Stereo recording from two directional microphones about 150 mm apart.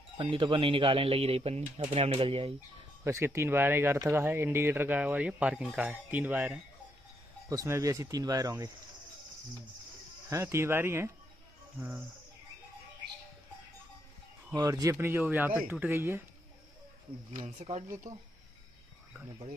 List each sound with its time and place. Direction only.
0.2 s speech: 35° right (ahead or behind)
3.0 s speech: 15° right (ahead or behind)
10.3 s speech: 20° right (ahead or behind)
14.5 s speech: 25° right (ahead or behind)
17.6 s speech: 40° right (ahead or behind)